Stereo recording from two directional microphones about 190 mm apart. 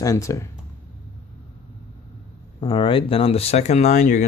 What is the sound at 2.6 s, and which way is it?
Speech, 25° left (ahead or behind).